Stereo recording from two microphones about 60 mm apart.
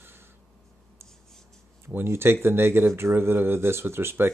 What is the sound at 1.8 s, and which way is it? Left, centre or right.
Speech, right.